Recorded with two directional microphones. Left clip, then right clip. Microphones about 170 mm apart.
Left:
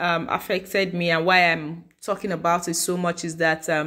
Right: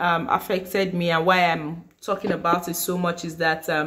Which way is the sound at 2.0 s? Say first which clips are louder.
Even; 40° left (ahead or behind).